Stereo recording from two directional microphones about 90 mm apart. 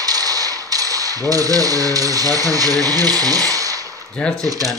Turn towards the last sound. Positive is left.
turn(degrees=-40)  # may be behind; listen again after turning